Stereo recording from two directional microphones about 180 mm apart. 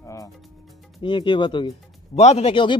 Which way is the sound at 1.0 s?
25° left (ahead or behind).